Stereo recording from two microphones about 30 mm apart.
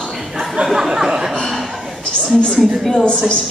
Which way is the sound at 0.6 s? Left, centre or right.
Right.